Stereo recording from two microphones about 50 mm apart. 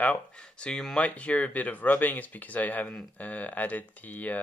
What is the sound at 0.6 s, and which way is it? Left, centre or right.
Speech, centre.